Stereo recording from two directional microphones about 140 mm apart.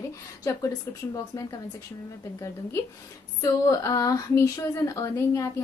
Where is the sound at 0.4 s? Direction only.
20° left (ahead or behind).